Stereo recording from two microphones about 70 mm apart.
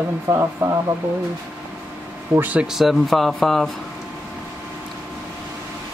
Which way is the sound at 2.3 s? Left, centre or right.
Right.